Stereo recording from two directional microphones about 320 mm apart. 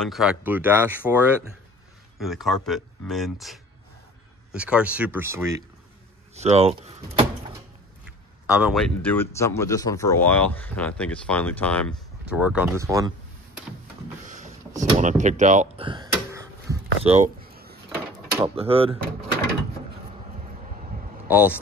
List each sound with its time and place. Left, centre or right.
0.0 s speech: centre
2.1 s speech: centre
6.3 s speech: centre
8.5 s speech: centre
14.2 s vehicle: right
14.8 s door: right
18.4 s speech: centre
21.3 s speech: centre